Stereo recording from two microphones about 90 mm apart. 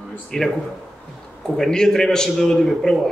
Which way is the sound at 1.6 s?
5° left (ahead or behind).